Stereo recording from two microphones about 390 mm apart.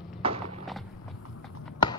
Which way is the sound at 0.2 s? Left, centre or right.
Centre.